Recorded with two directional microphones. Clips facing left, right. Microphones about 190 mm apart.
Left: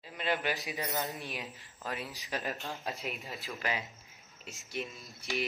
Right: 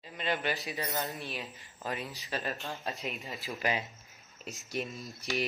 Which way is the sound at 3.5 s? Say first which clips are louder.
Right 4 dB; 20° right (ahead or behind).